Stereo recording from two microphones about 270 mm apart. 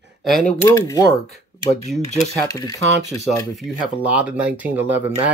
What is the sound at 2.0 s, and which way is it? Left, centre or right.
Speech, centre.